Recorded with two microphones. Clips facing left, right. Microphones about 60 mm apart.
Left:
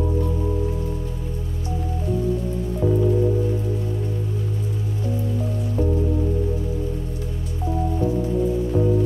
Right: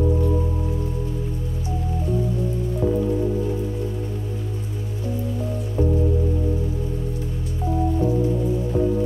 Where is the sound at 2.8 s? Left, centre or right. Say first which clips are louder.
Left 1 dB; centre.